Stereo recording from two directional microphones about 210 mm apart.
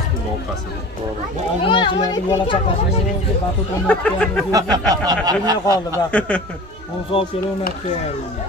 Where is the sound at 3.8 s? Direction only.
5° left (ahead or behind).